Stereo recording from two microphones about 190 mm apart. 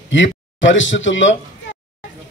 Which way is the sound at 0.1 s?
80° left.